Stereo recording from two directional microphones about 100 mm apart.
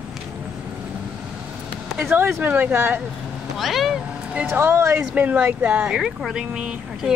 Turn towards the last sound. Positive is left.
turn(degrees=-5)  # may be behind; listen again after turning